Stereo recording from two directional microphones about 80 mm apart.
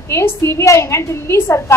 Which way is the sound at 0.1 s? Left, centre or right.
Left.